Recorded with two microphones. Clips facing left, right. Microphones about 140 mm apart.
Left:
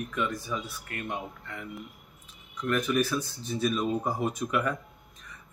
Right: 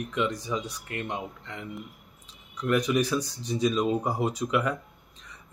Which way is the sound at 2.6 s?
15° right (ahead or behind).